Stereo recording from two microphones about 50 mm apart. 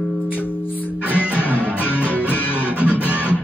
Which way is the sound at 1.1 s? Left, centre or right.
Left.